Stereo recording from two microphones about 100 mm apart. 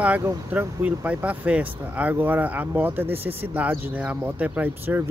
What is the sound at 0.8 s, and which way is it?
Speech, 15° right (ahead or behind).